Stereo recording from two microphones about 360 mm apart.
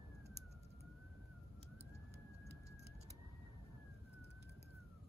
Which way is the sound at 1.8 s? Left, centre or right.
Right.